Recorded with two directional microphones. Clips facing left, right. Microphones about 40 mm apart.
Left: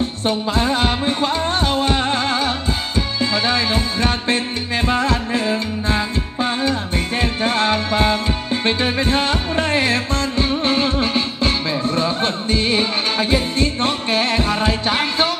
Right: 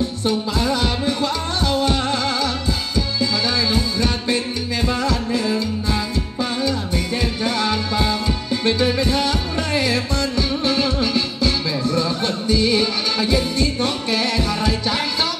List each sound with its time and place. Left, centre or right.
0.2 s music: left